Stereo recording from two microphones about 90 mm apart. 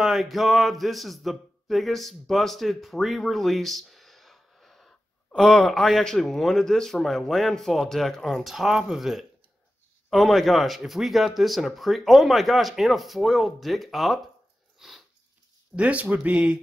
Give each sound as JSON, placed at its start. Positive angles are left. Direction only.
{"t": 0.0, "sound": "speech", "side_deg": 0}
{"t": 14.8, "sound": "sniff", "side_deg": -5}
{"t": 15.7, "sound": "speech", "side_deg": -15}